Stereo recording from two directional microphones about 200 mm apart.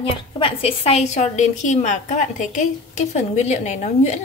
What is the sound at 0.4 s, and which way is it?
A woman's voice, 25° left (ahead or behind).